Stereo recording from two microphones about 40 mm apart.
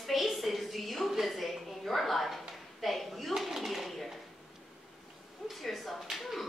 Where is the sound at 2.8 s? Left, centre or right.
Centre.